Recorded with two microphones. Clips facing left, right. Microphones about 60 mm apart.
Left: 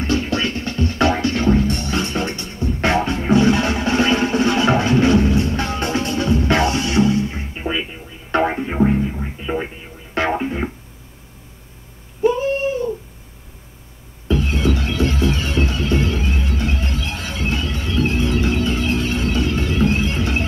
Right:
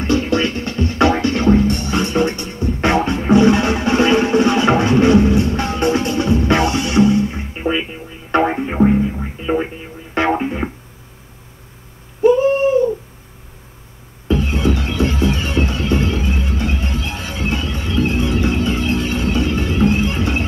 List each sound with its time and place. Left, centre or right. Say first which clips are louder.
0.0 s music: right 4 dB; right
7.7 s music: right 4 dB; right
8.4 s music: right 3 dB; centre
10.1 s music: right 3 dB; right
12.2 s cat: right 5 dB; right
14.2 s music: right 2 dB; right